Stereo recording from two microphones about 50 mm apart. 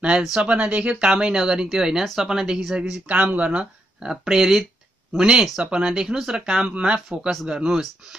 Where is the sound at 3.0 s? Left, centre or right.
Right.